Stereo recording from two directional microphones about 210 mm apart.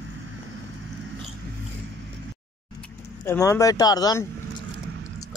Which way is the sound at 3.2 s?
15° left (ahead or behind).